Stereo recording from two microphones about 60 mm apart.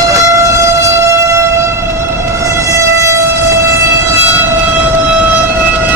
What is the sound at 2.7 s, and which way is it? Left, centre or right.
Train, right.